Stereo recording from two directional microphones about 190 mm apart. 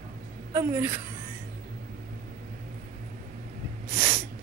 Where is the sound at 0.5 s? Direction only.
15° right (ahead or behind).